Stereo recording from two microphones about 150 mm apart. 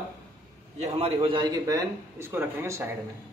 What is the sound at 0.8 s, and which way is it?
A man's voice, 40° right (ahead or behind).